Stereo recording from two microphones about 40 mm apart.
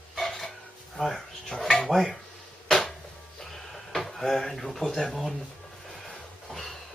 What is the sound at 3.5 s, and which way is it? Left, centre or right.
Drawer open or close, centre.